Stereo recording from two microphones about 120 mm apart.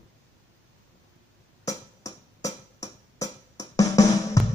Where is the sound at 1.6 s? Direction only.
30° left (ahead or behind).